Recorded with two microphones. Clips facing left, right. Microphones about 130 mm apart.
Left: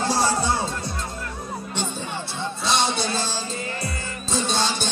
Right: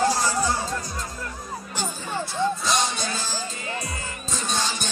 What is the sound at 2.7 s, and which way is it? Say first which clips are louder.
Music: left 2 dB; 30° left (ahead or behind).